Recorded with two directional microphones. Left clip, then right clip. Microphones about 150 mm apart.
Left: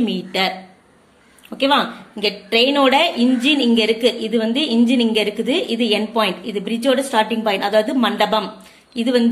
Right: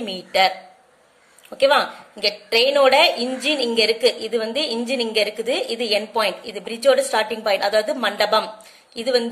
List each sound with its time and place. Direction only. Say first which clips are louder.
0.0 s a woman's voice: right 2 dB; 35° right (ahead or behind)
1.6 s a woman's voice: even; 30° right (ahead or behind)